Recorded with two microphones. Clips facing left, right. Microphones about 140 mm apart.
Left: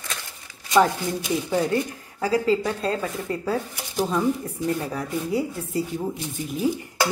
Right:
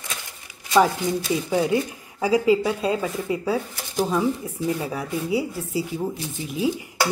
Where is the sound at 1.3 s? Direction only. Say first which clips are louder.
Even; 10° right (ahead or behind).